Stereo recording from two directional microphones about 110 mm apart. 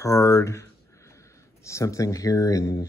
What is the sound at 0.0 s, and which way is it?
Speech, 25° left (ahead or behind).